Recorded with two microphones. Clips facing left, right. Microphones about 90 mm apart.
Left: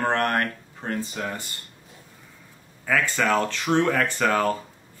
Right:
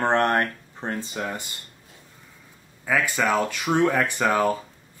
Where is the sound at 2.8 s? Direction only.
10° right (ahead or behind).